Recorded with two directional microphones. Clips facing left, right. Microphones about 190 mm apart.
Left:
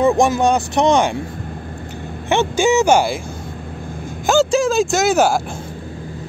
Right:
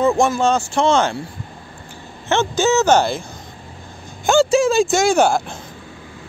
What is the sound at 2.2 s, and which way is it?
Speech, 15° left (ahead or behind).